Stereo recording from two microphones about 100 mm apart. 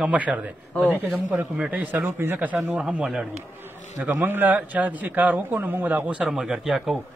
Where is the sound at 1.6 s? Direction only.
15° right (ahead or behind).